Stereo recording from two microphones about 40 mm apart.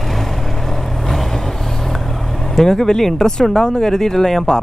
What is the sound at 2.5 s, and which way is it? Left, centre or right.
Speech, centre.